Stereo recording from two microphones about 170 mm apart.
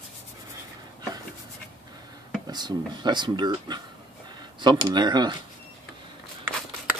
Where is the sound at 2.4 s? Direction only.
25° right (ahead or behind).